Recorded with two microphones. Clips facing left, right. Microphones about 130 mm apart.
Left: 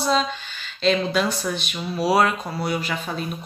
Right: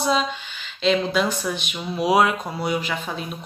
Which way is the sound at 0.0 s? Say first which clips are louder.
Even; 15° right (ahead or behind).